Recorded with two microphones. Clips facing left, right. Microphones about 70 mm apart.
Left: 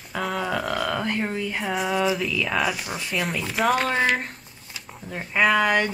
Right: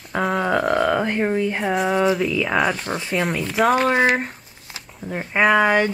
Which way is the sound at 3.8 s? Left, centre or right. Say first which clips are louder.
Right 5 dB; right.